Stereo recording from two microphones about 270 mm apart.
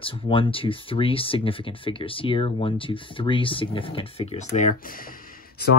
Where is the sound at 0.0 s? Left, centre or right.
Centre.